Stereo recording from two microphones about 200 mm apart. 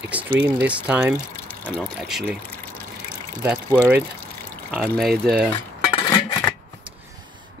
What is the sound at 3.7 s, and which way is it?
Speech, 10° right (ahead or behind).